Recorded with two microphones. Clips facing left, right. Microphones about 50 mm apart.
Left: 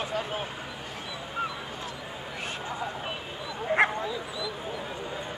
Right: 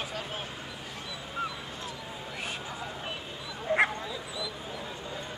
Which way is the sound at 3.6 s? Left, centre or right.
Centre.